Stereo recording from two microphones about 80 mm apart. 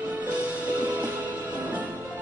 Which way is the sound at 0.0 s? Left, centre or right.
Centre.